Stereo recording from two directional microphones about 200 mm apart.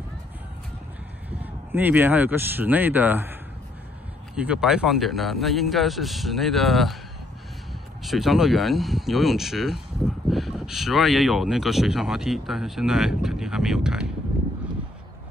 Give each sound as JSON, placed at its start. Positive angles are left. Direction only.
{"t": 1.4, "sound": "speech", "side_deg": -10}
{"t": 4.4, "sound": "speech", "side_deg": -5}
{"t": 8.0, "sound": "speech", "side_deg": 0}